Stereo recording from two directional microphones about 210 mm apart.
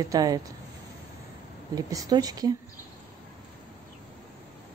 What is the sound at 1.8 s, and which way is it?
Speech, 15° right (ahead or behind).